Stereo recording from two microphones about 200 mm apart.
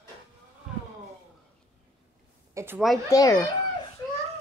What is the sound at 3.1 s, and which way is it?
Speech, 15° left (ahead or behind).